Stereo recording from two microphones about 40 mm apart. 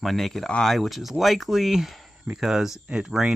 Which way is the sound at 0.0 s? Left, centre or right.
Centre.